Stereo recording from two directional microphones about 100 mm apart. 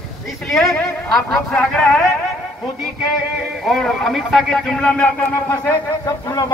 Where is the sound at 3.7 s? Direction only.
Centre (ahead or behind).